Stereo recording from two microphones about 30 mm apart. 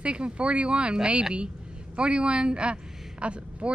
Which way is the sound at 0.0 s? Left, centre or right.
Right.